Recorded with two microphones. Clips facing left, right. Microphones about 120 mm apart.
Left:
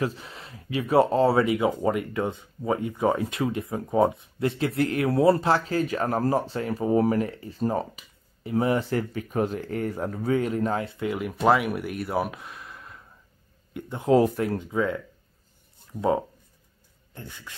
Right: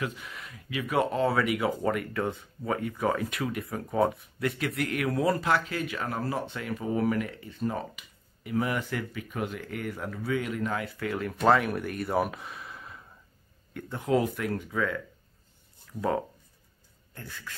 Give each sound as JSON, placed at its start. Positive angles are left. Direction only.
{"t": 0.0, "sound": "speech", "side_deg": 30}
{"t": 13.7, "sound": "speech", "side_deg": 15}
{"t": 14.0, "sound": "speech", "side_deg": 35}